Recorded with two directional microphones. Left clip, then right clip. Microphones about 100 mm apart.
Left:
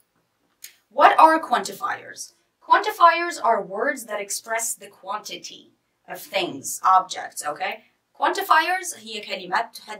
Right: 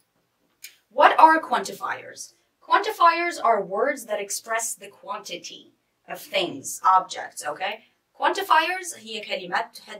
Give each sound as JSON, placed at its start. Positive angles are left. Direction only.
{"t": 0.6, "sound": "a woman's voice", "side_deg": 15}